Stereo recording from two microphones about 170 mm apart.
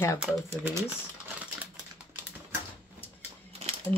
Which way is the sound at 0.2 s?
15° right (ahead or behind).